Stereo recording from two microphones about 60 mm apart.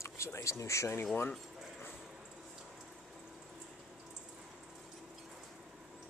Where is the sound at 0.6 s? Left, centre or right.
Left.